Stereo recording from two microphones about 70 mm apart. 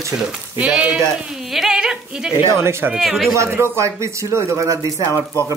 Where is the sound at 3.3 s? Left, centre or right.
Right.